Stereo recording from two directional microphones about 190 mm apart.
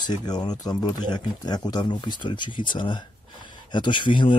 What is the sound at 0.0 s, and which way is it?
Speech, 20° left (ahead or behind).